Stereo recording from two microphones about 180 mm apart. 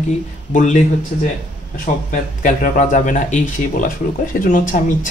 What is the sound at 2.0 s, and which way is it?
Speech, 45° left (ahead or behind).